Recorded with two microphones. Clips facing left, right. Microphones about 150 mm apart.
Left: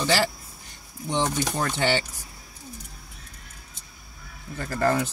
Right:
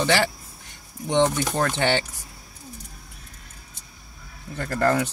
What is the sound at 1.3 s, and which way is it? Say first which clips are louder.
Speech: right 3 dB; 65° right (ahead or behind).